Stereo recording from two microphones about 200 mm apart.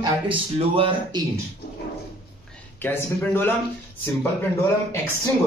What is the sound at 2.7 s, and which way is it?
Speech, 10° left (ahead or behind).